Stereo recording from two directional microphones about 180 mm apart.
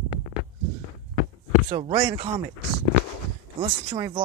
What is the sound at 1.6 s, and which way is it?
Speech, 35° right (ahead or behind).